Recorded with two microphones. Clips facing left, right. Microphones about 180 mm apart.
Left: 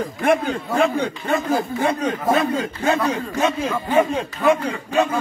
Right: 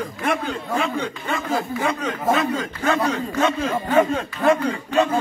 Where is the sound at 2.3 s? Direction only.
30° left (ahead or behind).